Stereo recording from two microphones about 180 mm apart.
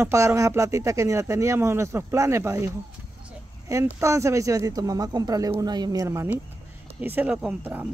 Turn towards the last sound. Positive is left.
turn(degrees=-10)  # may be behind; listen again after turning